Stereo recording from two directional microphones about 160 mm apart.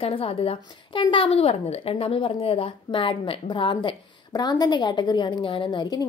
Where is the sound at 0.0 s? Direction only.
35° left (ahead or behind).